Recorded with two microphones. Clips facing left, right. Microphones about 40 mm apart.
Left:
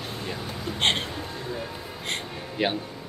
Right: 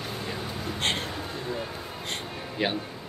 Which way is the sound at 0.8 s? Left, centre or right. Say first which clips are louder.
Left 5 dB; left.